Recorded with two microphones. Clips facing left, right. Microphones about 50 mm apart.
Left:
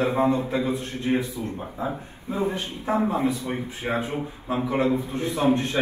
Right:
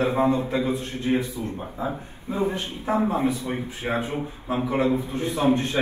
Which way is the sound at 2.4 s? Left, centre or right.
Centre.